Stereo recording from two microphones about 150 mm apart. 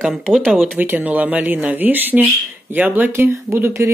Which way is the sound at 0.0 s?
Centre (ahead or behind).